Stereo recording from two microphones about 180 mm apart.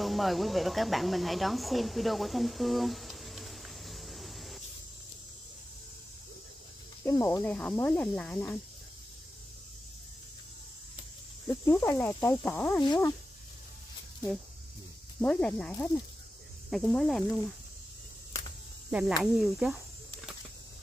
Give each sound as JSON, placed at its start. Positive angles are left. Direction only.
{"t": 0.0, "sound": "speech", "side_deg": 0}
{"t": 7.1, "sound": "speech", "side_deg": 15}
{"t": 11.4, "sound": "speech", "side_deg": 10}
{"t": 12.8, "sound": "speech", "side_deg": 20}
{"t": 15.2, "sound": "speech", "side_deg": 5}
{"t": 18.9, "sound": "speech", "side_deg": -5}